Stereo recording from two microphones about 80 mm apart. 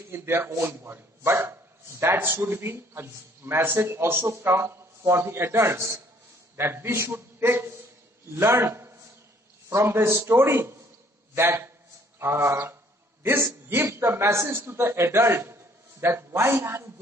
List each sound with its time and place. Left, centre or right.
0.1 s a man's voice: right
13.2 s a sound: right
13.8 s a man's voice: right